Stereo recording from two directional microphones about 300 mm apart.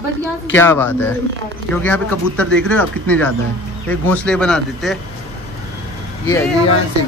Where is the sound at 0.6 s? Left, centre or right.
Centre.